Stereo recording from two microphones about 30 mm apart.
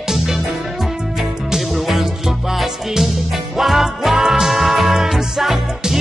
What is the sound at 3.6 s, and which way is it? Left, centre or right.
Music, centre.